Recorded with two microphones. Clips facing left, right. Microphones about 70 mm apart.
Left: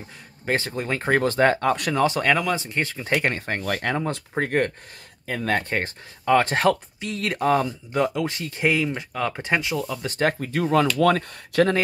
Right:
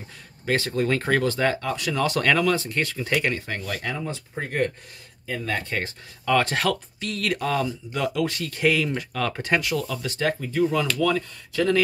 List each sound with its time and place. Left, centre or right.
0.5 s speech: left
2.0 s speech: left
10.0 s speech: left
10.5 s speech: left